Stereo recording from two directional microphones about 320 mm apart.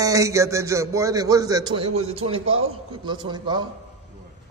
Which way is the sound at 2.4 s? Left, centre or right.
Right.